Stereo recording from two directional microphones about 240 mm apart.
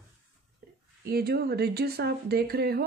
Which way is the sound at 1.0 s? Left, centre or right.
Right.